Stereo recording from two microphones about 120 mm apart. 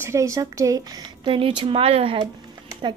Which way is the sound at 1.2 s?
45° right (ahead or behind).